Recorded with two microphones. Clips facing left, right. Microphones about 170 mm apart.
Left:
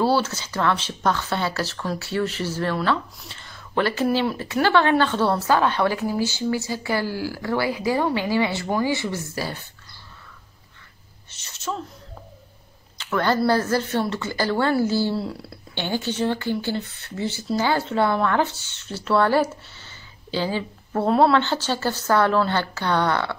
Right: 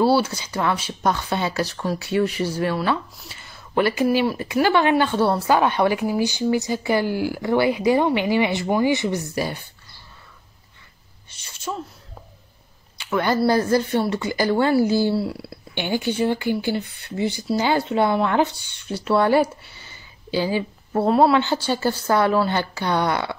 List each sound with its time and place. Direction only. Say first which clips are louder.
0.0 s a woman's voice: right 3 dB; 10° right (ahead or behind)
11.2 s a sound: even; 10° right (ahead or behind)
12.9 s a woman's voice: right 1 dB; 10° right (ahead or behind)